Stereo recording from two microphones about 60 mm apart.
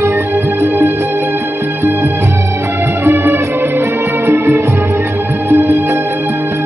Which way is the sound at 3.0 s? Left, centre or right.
Right.